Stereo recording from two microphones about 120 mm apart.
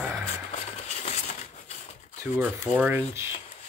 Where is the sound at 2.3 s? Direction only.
15° right (ahead or behind).